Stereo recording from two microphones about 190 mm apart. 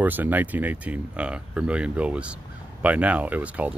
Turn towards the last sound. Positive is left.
turn(degrees=-10)  # may be behind; listen again after turning